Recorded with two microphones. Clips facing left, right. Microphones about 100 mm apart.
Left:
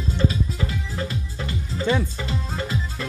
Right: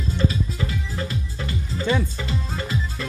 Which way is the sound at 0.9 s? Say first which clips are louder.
Even; 15° left (ahead or behind).